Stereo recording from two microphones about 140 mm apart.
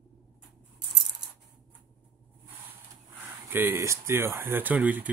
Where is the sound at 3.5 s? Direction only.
15° right (ahead or behind).